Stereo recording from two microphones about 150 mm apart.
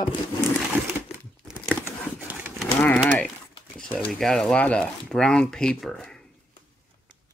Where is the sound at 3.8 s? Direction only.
5° left (ahead or behind).